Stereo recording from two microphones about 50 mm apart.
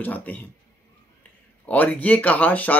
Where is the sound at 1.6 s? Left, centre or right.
Left.